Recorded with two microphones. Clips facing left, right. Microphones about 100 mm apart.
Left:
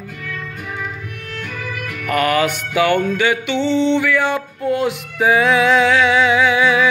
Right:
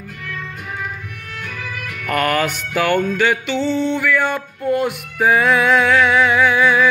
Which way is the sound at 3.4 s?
70° left (ahead or behind).